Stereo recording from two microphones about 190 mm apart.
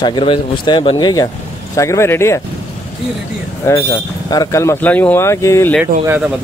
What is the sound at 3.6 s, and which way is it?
Speech, 20° left (ahead or behind).